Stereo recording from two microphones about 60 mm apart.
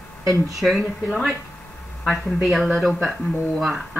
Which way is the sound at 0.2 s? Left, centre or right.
Right.